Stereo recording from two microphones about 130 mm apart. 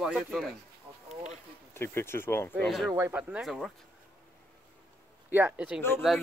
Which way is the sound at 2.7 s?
Centre (ahead or behind).